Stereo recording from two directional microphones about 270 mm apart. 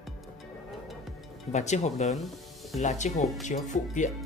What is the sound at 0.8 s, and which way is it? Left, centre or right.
Music, centre.